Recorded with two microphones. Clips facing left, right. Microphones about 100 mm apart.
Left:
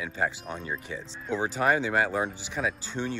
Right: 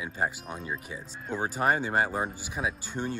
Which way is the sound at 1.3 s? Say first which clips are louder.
Left 2 dB; 40° right (ahead or behind).